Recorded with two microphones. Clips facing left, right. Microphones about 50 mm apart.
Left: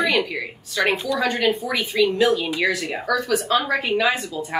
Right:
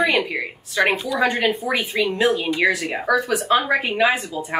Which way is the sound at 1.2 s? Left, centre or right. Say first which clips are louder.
Right 3 dB; centre.